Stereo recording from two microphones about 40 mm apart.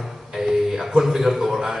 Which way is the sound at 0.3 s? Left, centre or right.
Centre.